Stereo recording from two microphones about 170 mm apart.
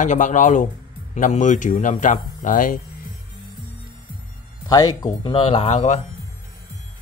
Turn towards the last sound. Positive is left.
turn(degrees=40)  # may be behind; listen again after turning